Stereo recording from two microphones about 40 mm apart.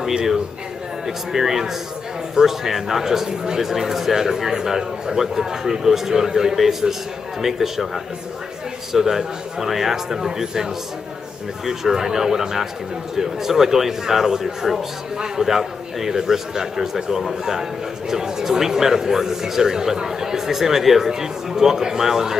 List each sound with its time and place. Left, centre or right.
0.0 s speech: centre